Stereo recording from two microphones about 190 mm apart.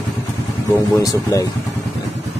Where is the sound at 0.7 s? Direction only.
15° left (ahead or behind).